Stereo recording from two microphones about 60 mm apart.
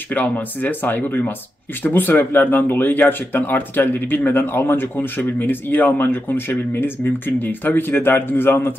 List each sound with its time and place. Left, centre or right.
0.1 s speech: left